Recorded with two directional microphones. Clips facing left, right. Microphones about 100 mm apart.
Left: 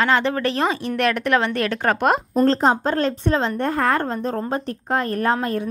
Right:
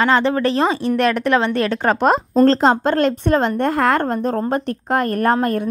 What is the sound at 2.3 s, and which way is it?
A woman's voice, 90° right.